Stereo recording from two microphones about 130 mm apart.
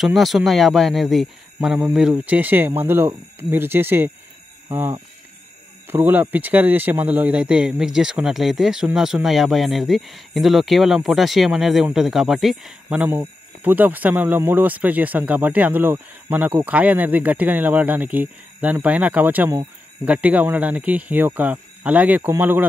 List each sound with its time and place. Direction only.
0.0 s speech: centre (ahead or behind); by 4.1 s 15° right (ahead or behind)
5.9 s speech: 15° right (ahead or behind)